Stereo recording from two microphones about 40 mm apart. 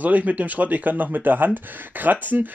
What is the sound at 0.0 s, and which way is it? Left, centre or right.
Speech, right.